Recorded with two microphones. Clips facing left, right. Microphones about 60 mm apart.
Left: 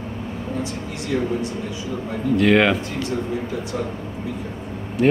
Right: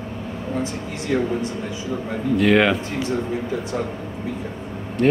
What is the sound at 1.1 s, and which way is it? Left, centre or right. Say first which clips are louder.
Speech: right 1 dB; right.